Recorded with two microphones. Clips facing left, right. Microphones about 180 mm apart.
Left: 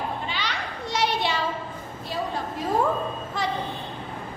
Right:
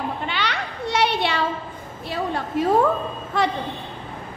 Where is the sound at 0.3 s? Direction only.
65° right (ahead or behind).